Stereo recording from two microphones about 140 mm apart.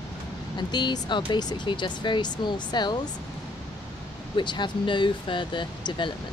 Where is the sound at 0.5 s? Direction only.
30° left (ahead or behind).